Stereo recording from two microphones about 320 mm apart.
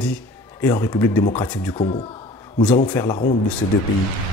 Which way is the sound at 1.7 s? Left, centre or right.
Centre.